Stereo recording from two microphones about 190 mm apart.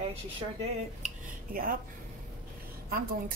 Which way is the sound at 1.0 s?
50° right (ahead or behind).